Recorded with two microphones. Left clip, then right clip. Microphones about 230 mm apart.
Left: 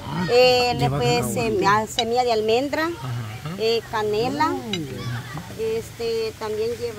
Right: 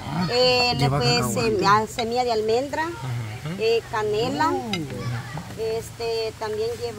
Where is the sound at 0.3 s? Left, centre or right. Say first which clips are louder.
Left 3 dB; left.